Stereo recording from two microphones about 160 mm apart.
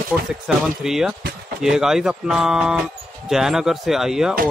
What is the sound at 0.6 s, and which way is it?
Speech, centre (ahead or behind).